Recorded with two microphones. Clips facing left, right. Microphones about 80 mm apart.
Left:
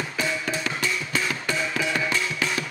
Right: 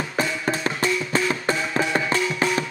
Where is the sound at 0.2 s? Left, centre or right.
Right.